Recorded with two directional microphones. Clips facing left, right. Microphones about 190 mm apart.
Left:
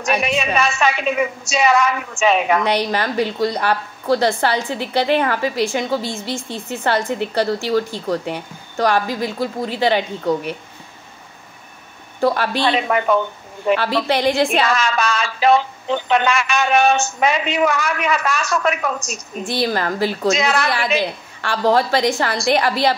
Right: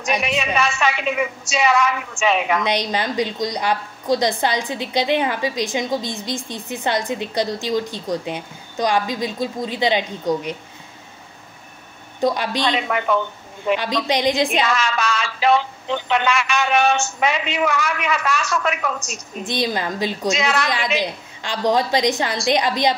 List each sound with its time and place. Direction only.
0.2 s speech: 45° left (ahead or behind)
2.9 s a woman's voice: 15° right (ahead or behind)
12.2 s a woman's voice: 15° right (ahead or behind)
12.7 s speech: 40° left (ahead or behind)
13.7 s a woman's voice: 15° right (ahead or behind)
14.6 s speech: 45° left (ahead or behind)
19.4 s a woman's voice: 15° right (ahead or behind)